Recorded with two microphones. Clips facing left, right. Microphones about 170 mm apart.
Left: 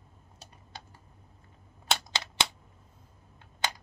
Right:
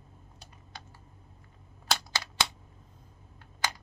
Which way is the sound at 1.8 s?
25° left (ahead or behind).